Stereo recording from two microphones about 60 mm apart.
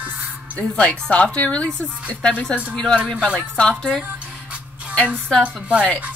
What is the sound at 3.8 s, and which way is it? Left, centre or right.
Speech, centre.